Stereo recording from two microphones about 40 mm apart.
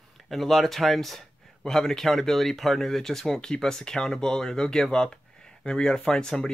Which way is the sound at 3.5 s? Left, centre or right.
Centre.